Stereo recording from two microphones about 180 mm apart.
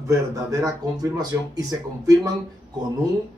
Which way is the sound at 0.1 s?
20° right (ahead or behind).